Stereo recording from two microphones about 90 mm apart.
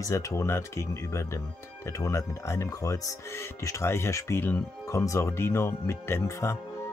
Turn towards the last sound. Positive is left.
turn(degrees=30)  # may be behind; listen again after turning